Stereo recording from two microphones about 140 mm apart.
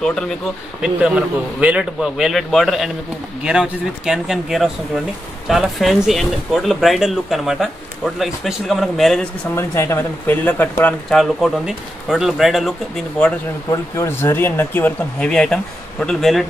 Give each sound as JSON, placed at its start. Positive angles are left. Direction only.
{"t": 0.7, "sound": "speech", "side_deg": -5}
{"t": 9.6, "sound": "speech", "side_deg": 20}
{"t": 13.7, "sound": "speech", "side_deg": 20}